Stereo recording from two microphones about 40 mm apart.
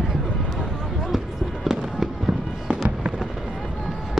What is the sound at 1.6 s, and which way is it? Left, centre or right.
Fireworks, centre.